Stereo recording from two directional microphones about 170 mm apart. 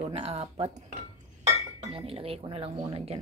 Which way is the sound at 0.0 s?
40° right (ahead or behind).